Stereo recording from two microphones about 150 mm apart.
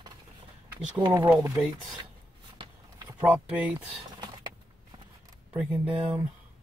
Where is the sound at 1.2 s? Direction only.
15° right (ahead or behind).